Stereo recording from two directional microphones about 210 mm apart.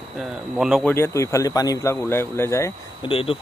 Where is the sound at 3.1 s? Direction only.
25° left (ahead or behind).